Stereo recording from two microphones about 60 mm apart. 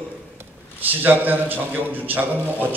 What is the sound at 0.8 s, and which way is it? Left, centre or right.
A man's voice, right.